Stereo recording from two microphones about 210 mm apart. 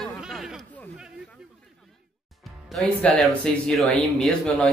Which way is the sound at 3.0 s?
5° left (ahead or behind).